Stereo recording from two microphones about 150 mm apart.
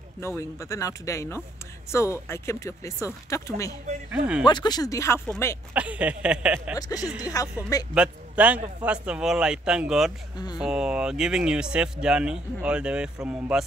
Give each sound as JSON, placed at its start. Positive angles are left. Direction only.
{"t": 0.2, "sound": "speech", "side_deg": 20}
{"t": 4.1, "sound": "a man's voice", "side_deg": -5}
{"t": 4.5, "sound": "speech", "side_deg": 30}
{"t": 5.7, "sound": "a man's voice", "side_deg": -10}
{"t": 6.8, "sound": "speech", "side_deg": 25}
{"t": 7.9, "sound": "a man's voice", "side_deg": -10}